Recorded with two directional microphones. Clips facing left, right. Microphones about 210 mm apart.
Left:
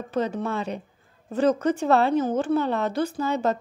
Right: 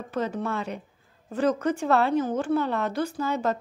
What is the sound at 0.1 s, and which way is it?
A woman's voice, 20° left (ahead or behind).